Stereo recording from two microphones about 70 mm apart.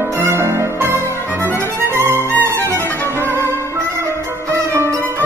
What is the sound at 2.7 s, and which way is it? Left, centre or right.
Music, left.